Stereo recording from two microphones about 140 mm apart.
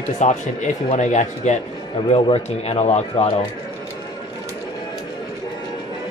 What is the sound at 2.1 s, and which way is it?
Speech, 45° left (ahead or behind).